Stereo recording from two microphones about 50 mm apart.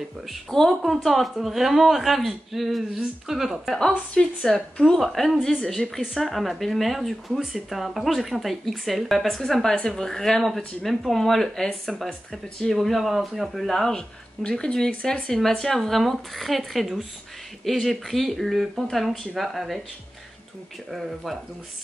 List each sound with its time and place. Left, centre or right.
0.3 s a woman's voice: centre
4.1 s a woman's voice: centre
20.9 s speech: centre